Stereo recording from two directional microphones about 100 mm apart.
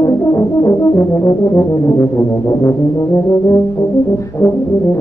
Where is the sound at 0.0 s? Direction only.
25° left (ahead or behind).